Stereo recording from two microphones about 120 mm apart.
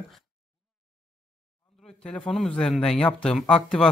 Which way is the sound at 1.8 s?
10° left (ahead or behind).